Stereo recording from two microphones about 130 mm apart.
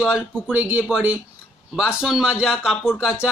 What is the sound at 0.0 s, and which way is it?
A man's voice, 10° right (ahead or behind).